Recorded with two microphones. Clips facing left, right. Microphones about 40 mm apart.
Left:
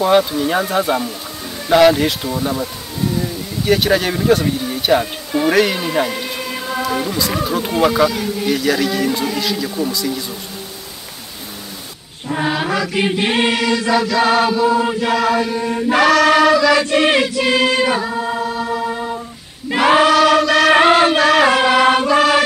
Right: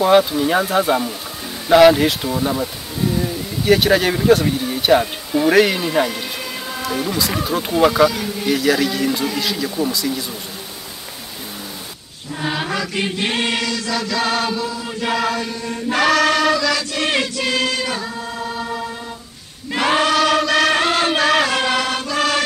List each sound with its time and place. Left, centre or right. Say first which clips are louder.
0.0 s speech: even; centre
12.4 s chant: left 2 dB; centre
15.0 s speech: left 4 dB; centre
15.3 s chant: left 7 dB; centre
16.0 s chant: left 4 dB; centre
17.0 s music: left 5 dB; centre
18.4 s music: left 4 dB; centre
18.9 s music: left 7 dB; left
19.7 s choir: left 5 dB; centre
20.7 s music: left 7 dB; centre
21.1 s music: left 3 dB; centre
21.5 s chant: left 6 dB; centre
21.8 s music: left 9 dB; left